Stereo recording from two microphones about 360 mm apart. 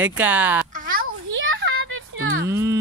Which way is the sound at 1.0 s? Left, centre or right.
Right.